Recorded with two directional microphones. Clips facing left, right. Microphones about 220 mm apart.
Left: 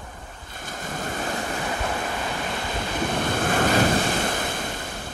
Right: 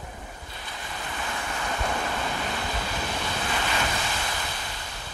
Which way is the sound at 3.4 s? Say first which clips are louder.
Left 10 dB; 50° left (ahead or behind).